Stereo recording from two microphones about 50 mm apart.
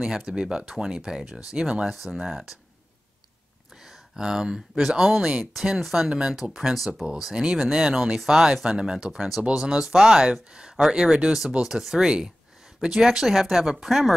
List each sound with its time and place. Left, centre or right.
0.0 s speech: centre
3.8 s a sound: centre
4.7 s speech: centre